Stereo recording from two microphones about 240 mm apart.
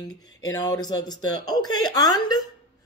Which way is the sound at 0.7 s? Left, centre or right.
Centre.